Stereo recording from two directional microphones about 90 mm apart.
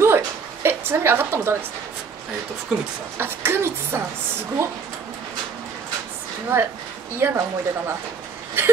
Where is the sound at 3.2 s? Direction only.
25° right (ahead or behind).